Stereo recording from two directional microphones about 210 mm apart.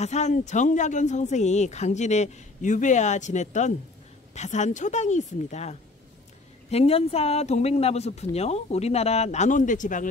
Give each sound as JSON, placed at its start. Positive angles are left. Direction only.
{"t": 0.0, "sound": "speech", "side_deg": 35}